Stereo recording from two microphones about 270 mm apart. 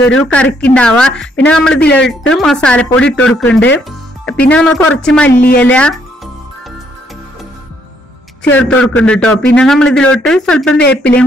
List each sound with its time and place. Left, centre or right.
0.0 s speech: left
0.3 s a man's voice: centre
1.8 s speech: left
2.3 s a man's voice: centre
8.5 s a man's voice: centre